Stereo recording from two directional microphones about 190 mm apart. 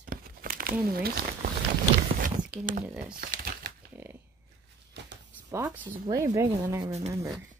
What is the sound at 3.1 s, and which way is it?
Crumpling, 50° right (ahead or behind).